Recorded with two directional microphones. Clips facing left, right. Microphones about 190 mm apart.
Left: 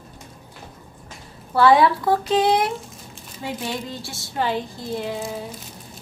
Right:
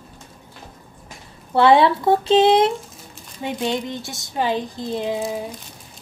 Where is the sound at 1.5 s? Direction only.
25° right (ahead or behind).